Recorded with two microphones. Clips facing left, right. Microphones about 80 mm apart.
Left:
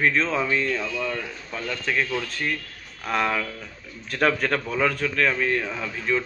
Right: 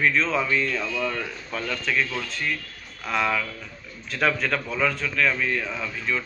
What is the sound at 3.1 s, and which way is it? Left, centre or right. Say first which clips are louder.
Speech: left 1 dB; left.